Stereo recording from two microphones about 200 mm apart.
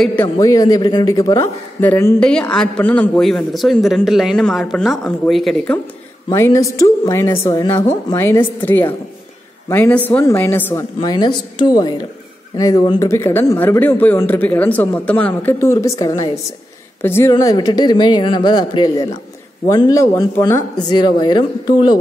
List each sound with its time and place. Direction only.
0.0 s speech: 5° left (ahead or behind)
0.4 s a man's voice: 20° left (ahead or behind); by 5.8 s centre (ahead or behind)
6.2 s speech: 15° left (ahead or behind)
11.0 s speech: 20° left (ahead or behind)